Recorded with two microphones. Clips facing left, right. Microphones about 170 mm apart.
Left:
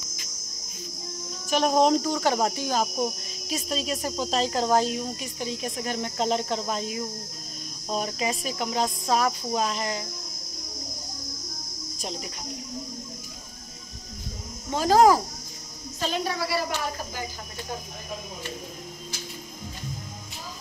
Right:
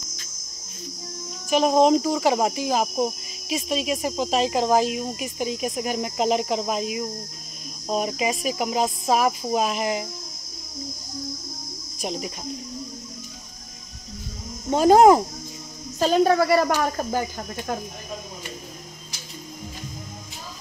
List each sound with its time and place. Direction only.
1.5 s speech: centre (ahead or behind)
12.0 s speech: 20° right (ahead or behind)
14.7 s speech: 20° right (ahead or behind)
16.0 s speech: 50° right (ahead or behind)